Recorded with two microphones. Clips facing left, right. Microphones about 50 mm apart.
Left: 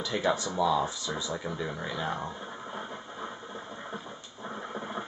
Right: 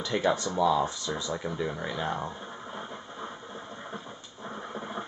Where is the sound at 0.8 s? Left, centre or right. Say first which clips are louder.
Right 1 dB; centre.